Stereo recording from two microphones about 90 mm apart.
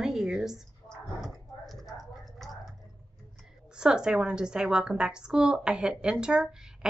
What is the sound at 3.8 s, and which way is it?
A woman's voice, 10° right (ahead or behind).